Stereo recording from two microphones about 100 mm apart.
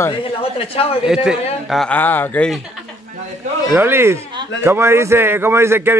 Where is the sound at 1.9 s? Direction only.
20° left (ahead or behind).